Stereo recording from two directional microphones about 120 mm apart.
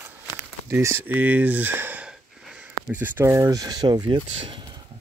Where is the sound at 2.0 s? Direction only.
5° right (ahead or behind); by 4.2 s 35° right (ahead or behind).